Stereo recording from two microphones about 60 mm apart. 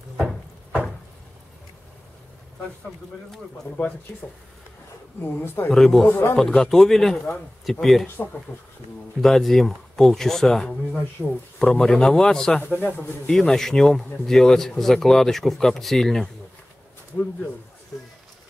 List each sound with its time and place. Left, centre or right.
5.2 s speech: left
5.7 s speech: centre
6.0 s speech: left
6.3 s speech: centre
8.5 s speech: left
9.2 s speech: centre
11.2 s speech: centre
12.5 s speech: left
13.3 s speech: centre